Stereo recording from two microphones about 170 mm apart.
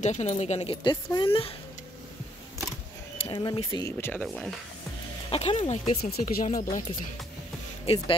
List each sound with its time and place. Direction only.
0.0 s speech: 45° left (ahead or behind)
3.2 s speech: 30° left (ahead or behind)
4.0 s speech: 10° left (ahead or behind)
5.3 s speech: 35° left (ahead or behind)
5.9 s speech: 55° left (ahead or behind)